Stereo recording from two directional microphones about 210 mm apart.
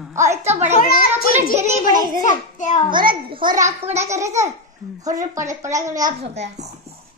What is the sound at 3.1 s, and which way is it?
A child's voice, 25° right (ahead or behind).